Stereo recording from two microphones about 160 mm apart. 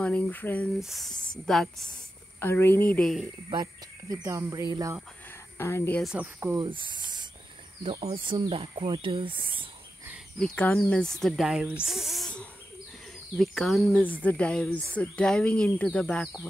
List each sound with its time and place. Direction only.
0.0 s speech: 10° left (ahead or behind)
0.7 s speech: centre (ahead or behind)
2.4 s speech: 15° left (ahead or behind)
4.1 s speech: 20° right (ahead or behind)
5.3 s a sound: 15° left (ahead or behind)
6.0 s speech: 10° right (ahead or behind)
6.5 s speech: 30° right (ahead or behind)
10.4 s speech: 5° left (ahead or behind)